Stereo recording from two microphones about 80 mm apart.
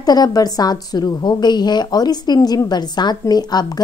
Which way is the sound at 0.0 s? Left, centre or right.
Left.